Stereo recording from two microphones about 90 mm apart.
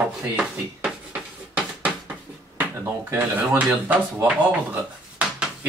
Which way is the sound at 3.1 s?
20° right (ahead or behind).